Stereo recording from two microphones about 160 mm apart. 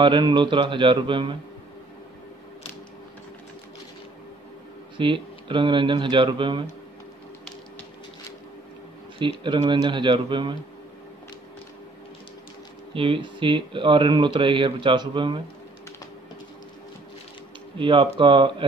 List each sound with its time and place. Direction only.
0.0 s speech: 30° right (ahead or behind)
4.9 s speech: 30° right (ahead or behind)
9.4 s speech: 30° right (ahead or behind)
12.9 s speech: 35° right (ahead or behind)
17.7 s speech: 30° right (ahead or behind)